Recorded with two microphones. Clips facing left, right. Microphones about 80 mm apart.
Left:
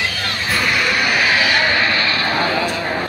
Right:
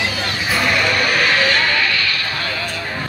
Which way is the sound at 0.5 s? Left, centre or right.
Centre.